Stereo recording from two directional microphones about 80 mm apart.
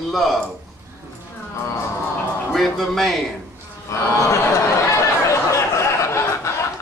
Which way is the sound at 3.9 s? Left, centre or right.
Left.